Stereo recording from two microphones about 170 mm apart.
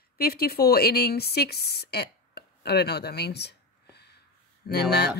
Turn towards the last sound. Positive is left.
turn(degrees=75)  # may be behind; listen again after turning